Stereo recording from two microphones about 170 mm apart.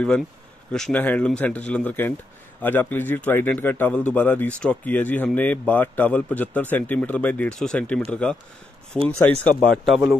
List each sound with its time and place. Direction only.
0.7 s a man's voice: 5° left (ahead or behind)